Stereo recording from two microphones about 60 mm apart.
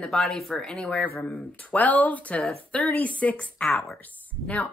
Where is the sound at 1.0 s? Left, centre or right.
Left.